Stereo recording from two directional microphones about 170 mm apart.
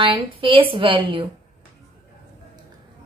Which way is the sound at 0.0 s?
30° right (ahead or behind).